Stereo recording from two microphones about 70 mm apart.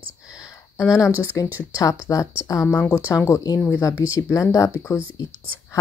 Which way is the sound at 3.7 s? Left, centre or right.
Left.